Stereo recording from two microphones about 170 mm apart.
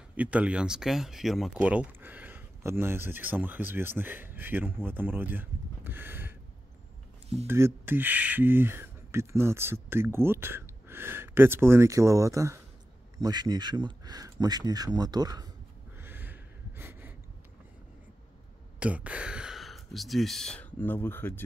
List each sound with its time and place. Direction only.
0.1 s speech: 10° right (ahead or behind)
7.4 s speech: 15° right (ahead or behind)
16.0 s gasp: 10° right (ahead or behind)
18.8 s speech: 5° right (ahead or behind); by 21.4 s 10° left (ahead or behind)